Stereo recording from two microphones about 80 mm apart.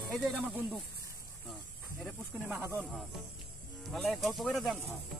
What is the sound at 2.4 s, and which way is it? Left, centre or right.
Speech, right.